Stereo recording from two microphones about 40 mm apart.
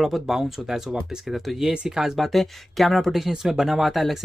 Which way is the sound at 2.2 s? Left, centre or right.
Centre.